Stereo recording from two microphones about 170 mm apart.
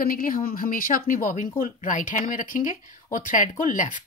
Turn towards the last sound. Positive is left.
turn(degrees=50)  # may be behind; listen again after turning